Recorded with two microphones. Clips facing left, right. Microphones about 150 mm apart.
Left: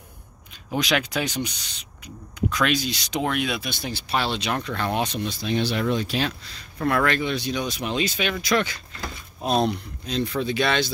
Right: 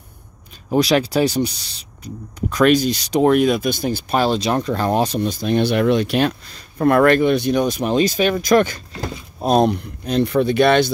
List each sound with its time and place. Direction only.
0.7 s speech: 40° right (ahead or behind); by 10.9 s 55° right (ahead or behind)